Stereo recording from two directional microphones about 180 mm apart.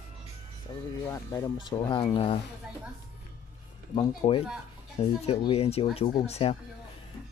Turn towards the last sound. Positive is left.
turn(degrees=35)  # may be behind; listen again after turning